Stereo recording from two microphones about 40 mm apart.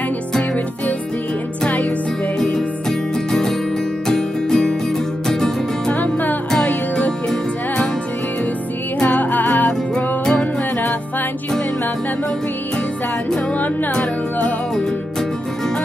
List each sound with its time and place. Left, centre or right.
1.7 s music: left
2.4 s music: centre
5.9 s music: left
7.1 s music: centre
9.0 s music: left